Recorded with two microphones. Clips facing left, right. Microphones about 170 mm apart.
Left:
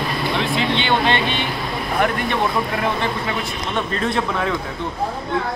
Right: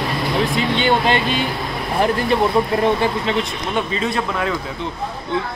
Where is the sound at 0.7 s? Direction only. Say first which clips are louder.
Right 3 dB; 40° right (ahead or behind).